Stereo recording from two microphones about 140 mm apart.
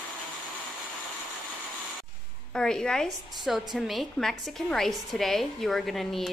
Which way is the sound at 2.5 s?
5° left (ahead or behind).